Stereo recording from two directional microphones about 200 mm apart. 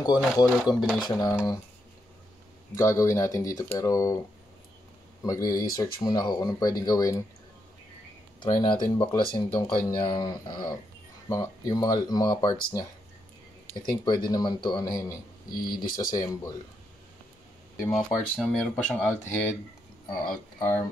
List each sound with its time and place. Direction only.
0.5 s speech: 5° right (ahead or behind)
1.0 s a man's voice: 20° left (ahead or behind)
2.7 s speech: 15° left (ahead or behind)
5.2 s speech: 15° left (ahead or behind)
8.4 s a man's voice: 25° left (ahead or behind)
15.6 s speech: 45° left (ahead or behind)
16.0 s a man's voice: 20° left (ahead or behind)
17.9 s speech: centre (ahead or behind)